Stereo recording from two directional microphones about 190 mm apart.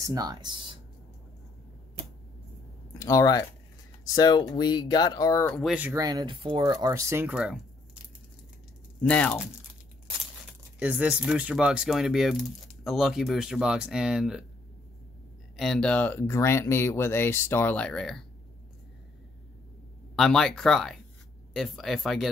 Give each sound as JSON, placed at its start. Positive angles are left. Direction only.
{"t": 0.0, "sound": "speech", "side_deg": -20}
{"t": 2.9, "sound": "speech", "side_deg": 15}
{"t": 5.5, "sound": "speech", "side_deg": 0}
{"t": 5.9, "sound": "speech", "side_deg": -20}
{"t": 9.0, "sound": "speech", "side_deg": 10}
{"t": 10.8, "sound": "speech", "side_deg": -5}
{"t": 15.5, "sound": "speech", "side_deg": 0}
{"t": 20.2, "sound": "speech", "side_deg": 0}